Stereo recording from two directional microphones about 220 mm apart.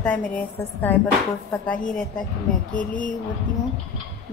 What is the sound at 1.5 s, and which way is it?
Speech, 5° left (ahead or behind).